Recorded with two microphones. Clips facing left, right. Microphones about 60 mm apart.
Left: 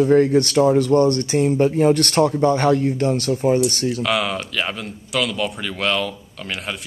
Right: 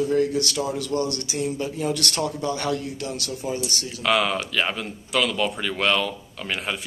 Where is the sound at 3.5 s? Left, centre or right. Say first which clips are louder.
Left 11 dB; left.